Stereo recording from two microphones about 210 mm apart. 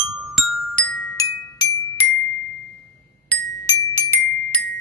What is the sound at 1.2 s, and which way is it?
Glockenspiel, 15° left (ahead or behind).